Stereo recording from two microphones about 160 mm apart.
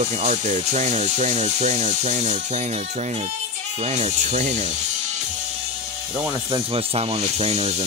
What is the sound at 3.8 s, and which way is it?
Speech, 45° right (ahead or behind).